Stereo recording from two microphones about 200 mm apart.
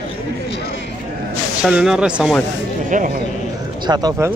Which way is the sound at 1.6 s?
5° right (ahead or behind).